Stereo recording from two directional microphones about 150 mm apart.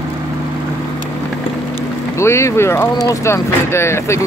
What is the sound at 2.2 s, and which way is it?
Speech, 20° left (ahead or behind).